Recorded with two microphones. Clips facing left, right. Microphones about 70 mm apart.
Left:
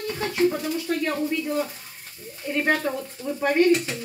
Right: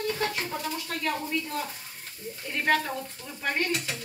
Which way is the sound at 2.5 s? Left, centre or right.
Centre.